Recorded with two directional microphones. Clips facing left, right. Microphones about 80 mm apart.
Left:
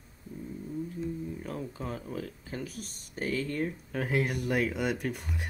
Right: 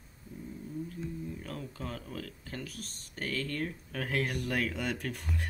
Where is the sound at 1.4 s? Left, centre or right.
Centre.